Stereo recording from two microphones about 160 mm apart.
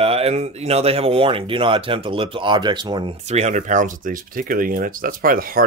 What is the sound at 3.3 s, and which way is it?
Speech, 45° right (ahead or behind).